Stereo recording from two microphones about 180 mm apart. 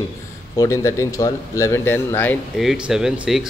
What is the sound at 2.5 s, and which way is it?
Speech, 5° right (ahead or behind).